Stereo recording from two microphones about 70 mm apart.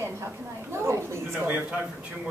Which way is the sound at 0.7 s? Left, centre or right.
Right.